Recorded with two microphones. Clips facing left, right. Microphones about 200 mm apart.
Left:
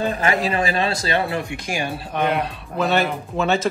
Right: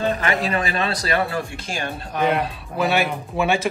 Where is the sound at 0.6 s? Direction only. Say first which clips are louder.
Left 2 dB; 30° left (ahead or behind); by 2.0 s 15° left (ahead or behind).